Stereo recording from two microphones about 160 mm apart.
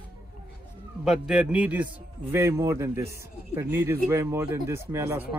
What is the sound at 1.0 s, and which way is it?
Speech, 5° right (ahead or behind).